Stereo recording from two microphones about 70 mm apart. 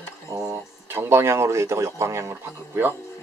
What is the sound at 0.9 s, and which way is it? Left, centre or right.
Speech, right.